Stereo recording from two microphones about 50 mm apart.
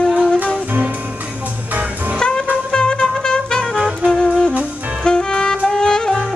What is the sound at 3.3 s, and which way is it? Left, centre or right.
Music, centre.